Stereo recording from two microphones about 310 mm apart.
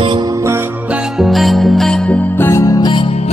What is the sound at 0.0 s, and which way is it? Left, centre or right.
Music, centre.